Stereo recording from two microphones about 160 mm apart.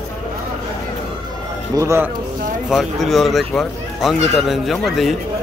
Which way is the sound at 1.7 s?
20° right (ahead or behind).